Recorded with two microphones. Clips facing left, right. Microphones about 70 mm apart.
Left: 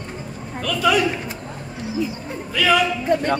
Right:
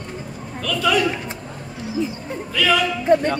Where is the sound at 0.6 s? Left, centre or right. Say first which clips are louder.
Left 1 dB; centre.